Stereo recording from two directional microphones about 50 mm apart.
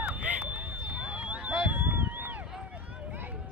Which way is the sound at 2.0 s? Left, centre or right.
Right.